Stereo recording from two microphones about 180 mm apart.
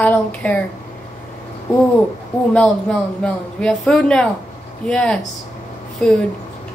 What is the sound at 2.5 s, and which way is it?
A woman's voice, 5° left (ahead or behind).